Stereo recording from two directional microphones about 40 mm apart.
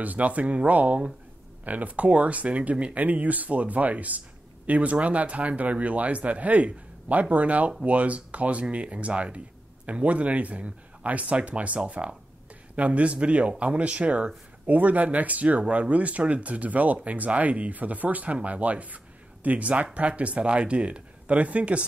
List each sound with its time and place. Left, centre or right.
0.0 s speech: right
14.7 s speech: right